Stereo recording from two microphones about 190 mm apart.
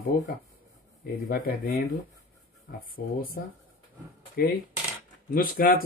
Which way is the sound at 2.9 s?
50° left (ahead or behind).